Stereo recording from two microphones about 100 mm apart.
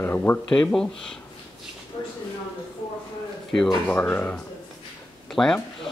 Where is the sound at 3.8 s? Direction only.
15° left (ahead or behind).